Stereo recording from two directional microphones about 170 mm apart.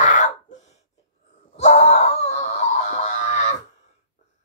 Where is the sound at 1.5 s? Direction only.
40° left (ahead or behind).